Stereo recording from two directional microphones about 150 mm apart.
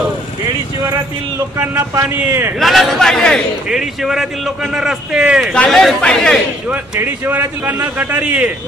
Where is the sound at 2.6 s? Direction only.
Centre (ahead or behind).